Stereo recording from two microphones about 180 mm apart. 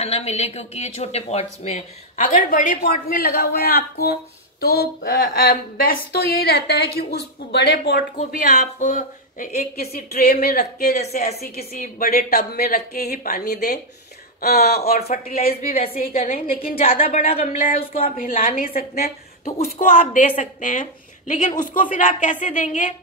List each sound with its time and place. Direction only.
0.0 s speech: 35° left (ahead or behind); by 8.0 s 80° left
8.2 s speech: 45° left (ahead or behind)
9.8 s speech: 60° left (ahead or behind)
16.7 s speech: 35° left (ahead or behind)
18.0 s speech: 50° left (ahead or behind)